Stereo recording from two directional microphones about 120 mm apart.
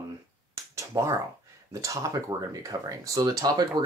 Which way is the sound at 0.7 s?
25° right (ahead or behind).